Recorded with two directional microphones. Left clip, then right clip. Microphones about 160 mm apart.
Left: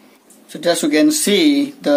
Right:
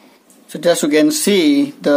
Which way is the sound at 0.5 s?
35° right (ahead or behind).